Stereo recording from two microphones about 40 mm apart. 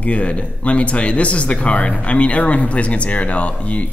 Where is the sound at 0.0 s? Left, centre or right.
Left.